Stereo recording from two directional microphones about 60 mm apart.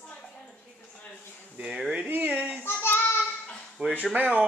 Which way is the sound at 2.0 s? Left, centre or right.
Right.